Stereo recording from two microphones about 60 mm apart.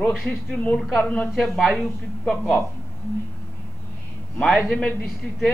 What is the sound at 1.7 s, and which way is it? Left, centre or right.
Speech, centre.